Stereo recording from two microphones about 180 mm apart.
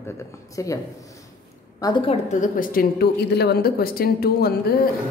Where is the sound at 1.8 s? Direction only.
25° left (ahead or behind).